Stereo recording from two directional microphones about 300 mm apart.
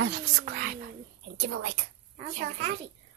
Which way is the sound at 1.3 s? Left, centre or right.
Right.